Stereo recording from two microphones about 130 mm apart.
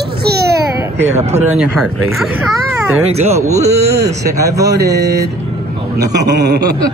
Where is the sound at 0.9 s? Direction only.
60° right (ahead or behind).